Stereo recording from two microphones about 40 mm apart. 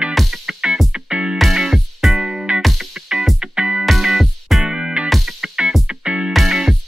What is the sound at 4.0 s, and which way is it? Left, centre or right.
Music, centre.